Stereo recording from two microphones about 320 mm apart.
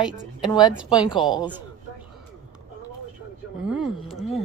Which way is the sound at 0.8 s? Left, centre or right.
Centre.